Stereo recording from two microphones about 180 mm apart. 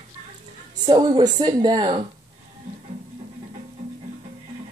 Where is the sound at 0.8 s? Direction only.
25° right (ahead or behind).